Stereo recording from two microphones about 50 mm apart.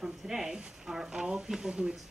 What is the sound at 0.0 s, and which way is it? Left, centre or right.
Speech, centre.